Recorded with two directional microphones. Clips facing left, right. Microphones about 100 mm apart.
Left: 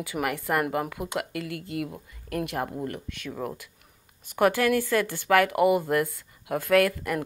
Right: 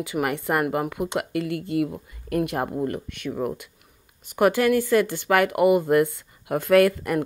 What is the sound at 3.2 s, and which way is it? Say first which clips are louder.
A woman's voice: right 6 dB; 20° right (ahead or behind).